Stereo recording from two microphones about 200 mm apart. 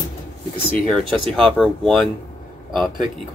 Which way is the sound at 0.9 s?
Centre (ahead or behind).